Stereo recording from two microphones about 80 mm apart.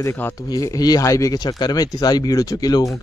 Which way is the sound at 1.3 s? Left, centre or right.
Left.